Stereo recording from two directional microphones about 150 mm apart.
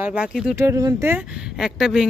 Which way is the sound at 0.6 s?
20° right (ahead or behind).